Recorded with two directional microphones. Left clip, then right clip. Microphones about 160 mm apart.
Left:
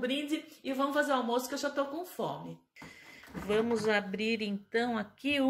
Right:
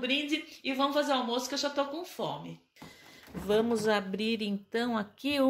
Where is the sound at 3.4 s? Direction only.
30° right (ahead or behind).